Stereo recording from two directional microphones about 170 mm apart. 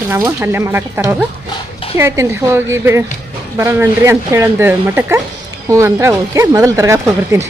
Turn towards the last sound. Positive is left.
turn(degrees=-15)  # may be behind; listen again after turning